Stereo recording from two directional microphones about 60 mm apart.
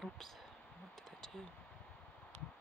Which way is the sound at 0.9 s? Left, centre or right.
Centre.